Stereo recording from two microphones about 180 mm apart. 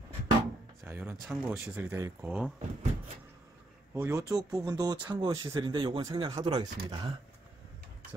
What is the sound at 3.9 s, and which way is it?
Speech, 10° right (ahead or behind).